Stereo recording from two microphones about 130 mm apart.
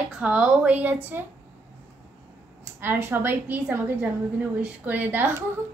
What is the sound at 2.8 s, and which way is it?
A woman's voice, 15° right (ahead or behind).